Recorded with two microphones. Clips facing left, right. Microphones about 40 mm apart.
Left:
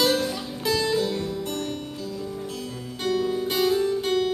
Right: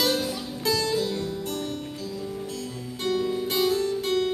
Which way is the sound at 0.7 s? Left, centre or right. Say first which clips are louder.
Left 1 dB; left.